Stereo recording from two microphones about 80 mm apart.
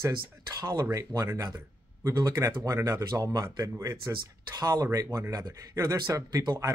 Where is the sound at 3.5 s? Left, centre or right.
Right.